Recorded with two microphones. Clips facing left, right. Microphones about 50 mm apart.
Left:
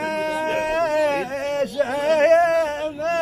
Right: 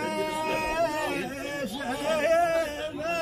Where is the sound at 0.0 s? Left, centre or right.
Left.